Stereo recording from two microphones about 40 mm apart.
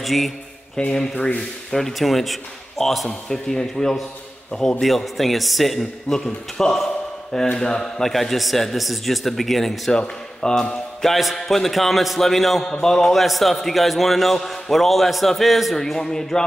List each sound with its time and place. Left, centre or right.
0.0 s speech: centre
0.8 s speech: left
1.7 s a man's voice: centre
9.9 s a man's voice: centre
11.1 s a man's voice: centre